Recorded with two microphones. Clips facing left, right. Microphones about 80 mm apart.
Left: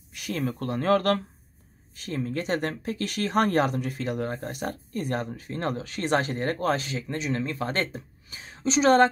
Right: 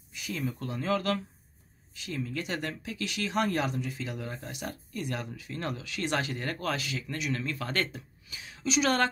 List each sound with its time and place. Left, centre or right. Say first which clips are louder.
0.1 s speech: left 5 dB; left
2.0 s speech: left 5 dB; left